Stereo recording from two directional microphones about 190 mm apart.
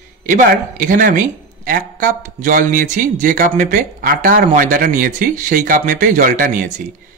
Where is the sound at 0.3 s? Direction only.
45° right (ahead or behind).